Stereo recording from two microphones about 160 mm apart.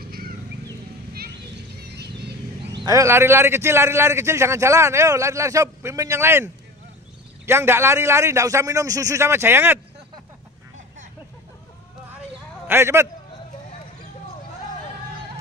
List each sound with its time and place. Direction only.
1.8 s a sound: 90° right
2.7 s a man's voice: 25° right (ahead or behind)
12.6 s a man's voice: 15° right (ahead or behind)